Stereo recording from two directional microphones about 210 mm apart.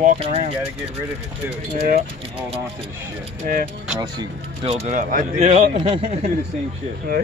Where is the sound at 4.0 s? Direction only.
20° right (ahead or behind).